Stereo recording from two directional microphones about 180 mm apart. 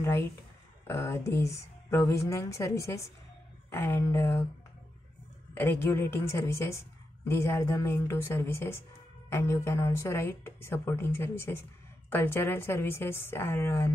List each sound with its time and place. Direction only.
0.8 s a woman's voice: 15° left (ahead or behind)
5.5 s a woman's voice: 10° left (ahead or behind)